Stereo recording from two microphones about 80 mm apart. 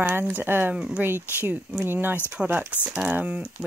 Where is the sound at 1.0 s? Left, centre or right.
Right.